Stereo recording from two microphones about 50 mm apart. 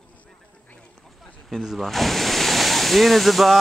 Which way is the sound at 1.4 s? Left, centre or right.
Centre.